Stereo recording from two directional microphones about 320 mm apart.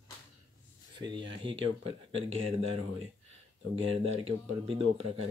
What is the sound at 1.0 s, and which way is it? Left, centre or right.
Speech, centre.